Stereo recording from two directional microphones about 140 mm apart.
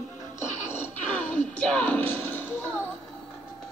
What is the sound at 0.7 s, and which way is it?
Music, 15° left (ahead or behind).